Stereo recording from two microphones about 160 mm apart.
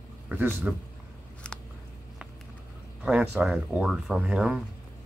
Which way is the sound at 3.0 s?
5° right (ahead or behind).